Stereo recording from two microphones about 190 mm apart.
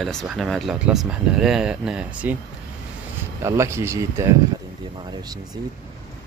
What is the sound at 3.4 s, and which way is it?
Speech, 15° right (ahead or behind).